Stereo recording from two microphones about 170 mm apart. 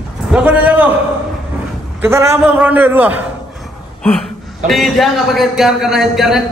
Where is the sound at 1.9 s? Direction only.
10° right (ahead or behind).